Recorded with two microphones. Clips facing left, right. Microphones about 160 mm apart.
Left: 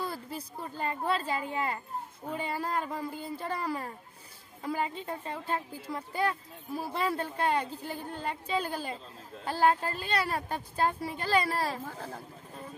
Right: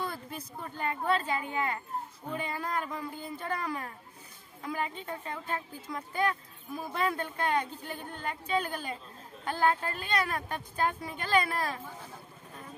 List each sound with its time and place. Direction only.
0.0 s speech: 35° left (ahead or behind)